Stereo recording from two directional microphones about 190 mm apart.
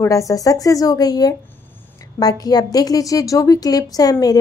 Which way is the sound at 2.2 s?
20° left (ahead or behind).